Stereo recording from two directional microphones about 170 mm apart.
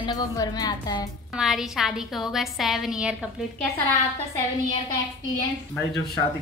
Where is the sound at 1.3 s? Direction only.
Centre (ahead or behind).